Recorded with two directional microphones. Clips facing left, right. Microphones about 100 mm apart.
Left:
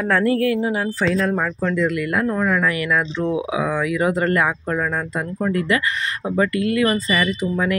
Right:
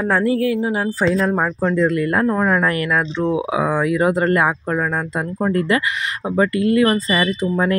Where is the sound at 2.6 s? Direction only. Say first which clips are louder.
Right 2 dB; 40° right (ahead or behind).